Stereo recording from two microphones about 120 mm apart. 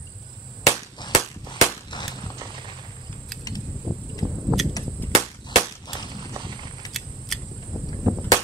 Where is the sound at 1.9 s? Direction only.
35° left (ahead or behind).